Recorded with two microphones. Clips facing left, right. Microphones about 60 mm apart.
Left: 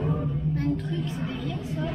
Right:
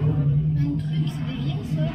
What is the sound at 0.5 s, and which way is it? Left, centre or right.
Music, left.